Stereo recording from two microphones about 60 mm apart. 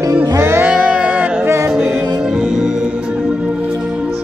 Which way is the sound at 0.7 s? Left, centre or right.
Centre.